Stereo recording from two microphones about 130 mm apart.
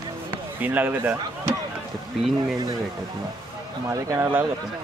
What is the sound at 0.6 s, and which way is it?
Speech, 15° right (ahead or behind).